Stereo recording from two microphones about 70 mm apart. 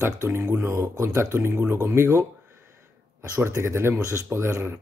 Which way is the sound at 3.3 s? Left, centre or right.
Right.